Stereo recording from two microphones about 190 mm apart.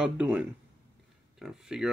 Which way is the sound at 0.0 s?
5° right (ahead or behind).